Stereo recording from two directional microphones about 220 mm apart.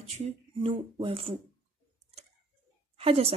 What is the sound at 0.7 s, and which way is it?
Speech, 25° right (ahead or behind).